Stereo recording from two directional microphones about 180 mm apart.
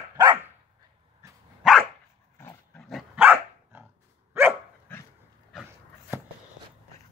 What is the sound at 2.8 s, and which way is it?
Dog, centre (ahead or behind).